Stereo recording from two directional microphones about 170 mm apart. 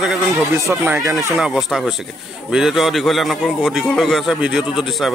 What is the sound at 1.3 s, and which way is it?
A man's voice, centre (ahead or behind).